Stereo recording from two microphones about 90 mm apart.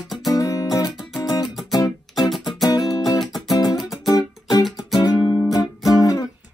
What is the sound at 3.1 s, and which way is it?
Music, centre (ahead or behind).